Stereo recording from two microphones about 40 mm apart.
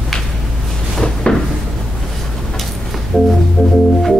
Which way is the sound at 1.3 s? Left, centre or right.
Left.